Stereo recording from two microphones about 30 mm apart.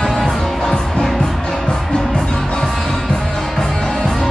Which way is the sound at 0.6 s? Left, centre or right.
Left.